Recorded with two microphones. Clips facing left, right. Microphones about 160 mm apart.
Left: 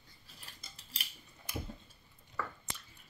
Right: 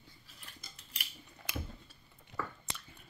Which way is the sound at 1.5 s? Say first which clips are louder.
Even; 85° right.